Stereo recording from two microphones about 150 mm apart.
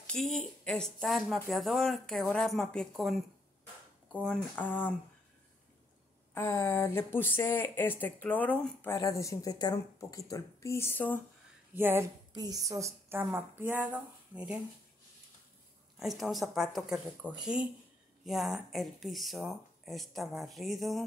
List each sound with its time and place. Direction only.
0.0 s a woman's voice: 5° left (ahead or behind)
4.1 s speech: 10° left (ahead or behind)
6.3 s speech: 15° left (ahead or behind)
8.9 s a woman's voice: 20° left (ahead or behind)
11.7 s speech: 15° right (ahead or behind)
12.3 s a woman's voice: 25° right (ahead or behind); by 14.6 s 5° right (ahead or behind)
16.0 s a woman's voice: centre (ahead or behind)